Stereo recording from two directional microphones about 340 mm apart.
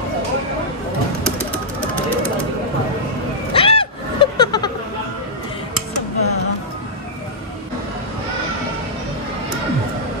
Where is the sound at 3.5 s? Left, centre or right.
Centre.